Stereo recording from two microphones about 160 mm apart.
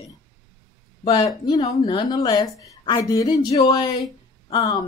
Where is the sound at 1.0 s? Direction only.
25° left (ahead or behind).